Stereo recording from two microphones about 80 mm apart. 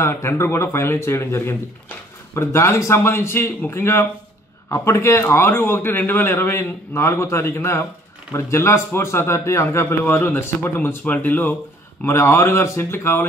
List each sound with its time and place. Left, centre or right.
0.0 s a man's voice: left